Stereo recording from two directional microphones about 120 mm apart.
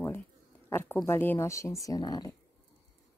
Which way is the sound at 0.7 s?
20° left (ahead or behind).